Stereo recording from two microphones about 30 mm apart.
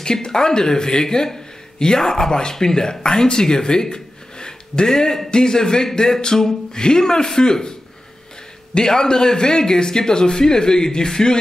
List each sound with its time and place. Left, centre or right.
0.0 s a man's voice: left
5.9 s a sound: centre
6.7 s a man's voice: left
8.7 s a man's voice: left